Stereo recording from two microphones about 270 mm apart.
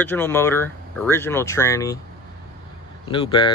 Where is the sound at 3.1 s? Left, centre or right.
Centre.